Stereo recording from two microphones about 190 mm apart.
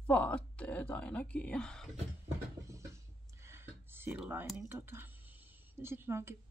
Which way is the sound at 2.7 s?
15° right (ahead or behind).